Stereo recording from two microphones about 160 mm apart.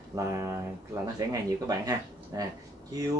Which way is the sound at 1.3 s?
20° right (ahead or behind).